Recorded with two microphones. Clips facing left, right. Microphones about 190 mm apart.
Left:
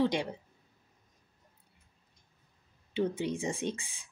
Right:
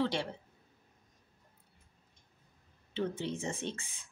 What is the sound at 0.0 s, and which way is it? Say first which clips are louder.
Speech: left 4 dB; 15° left (ahead or behind).